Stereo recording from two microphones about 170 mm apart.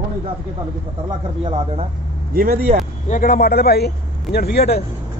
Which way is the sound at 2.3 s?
60° right (ahead or behind).